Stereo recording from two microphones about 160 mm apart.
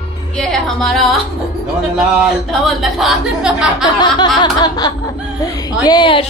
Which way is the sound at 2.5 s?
Centre (ahead or behind).